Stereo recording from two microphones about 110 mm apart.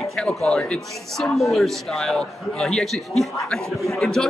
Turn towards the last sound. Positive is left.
turn(degrees=5)  # may be behind; listen again after turning